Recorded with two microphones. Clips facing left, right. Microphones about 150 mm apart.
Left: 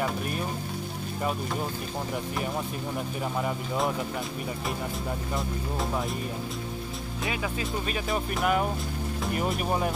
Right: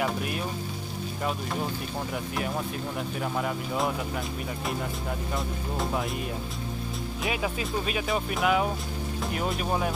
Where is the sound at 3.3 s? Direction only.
Centre (ahead or behind).